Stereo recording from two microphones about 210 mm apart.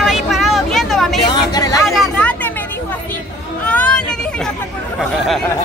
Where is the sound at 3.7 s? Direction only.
5° left (ahead or behind).